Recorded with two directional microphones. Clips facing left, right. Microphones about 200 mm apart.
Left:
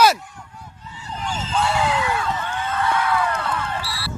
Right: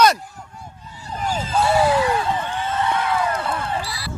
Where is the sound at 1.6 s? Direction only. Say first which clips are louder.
Right 4 dB; 35° right (ahead or behind); by 4.1 s 15° right (ahead or behind).